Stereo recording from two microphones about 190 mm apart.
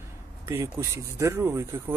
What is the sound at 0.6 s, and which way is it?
Speech, 15° right (ahead or behind).